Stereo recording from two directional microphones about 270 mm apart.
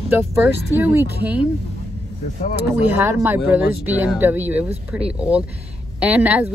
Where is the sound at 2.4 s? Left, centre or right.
Left.